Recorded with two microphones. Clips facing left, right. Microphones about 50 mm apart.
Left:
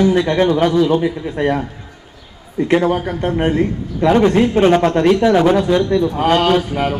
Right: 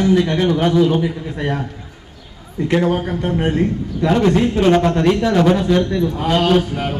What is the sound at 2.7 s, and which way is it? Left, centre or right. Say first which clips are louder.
A man's voice: left 2 dB; left.